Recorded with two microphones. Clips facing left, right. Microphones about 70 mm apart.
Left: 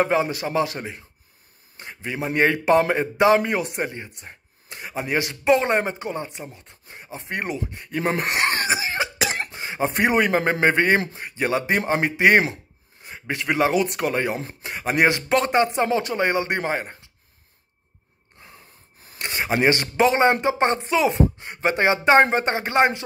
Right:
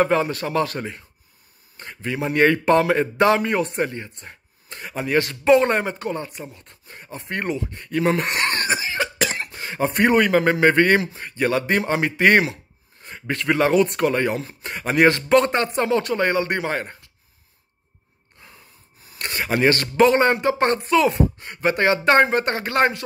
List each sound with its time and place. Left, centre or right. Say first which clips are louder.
0.0 s speech: right 1 dB; centre
5.7 s speech: even; centre
8.2 s cough: even; centre
9.5 s a man's voice: right 1 dB; left
19.1 s speech: even; left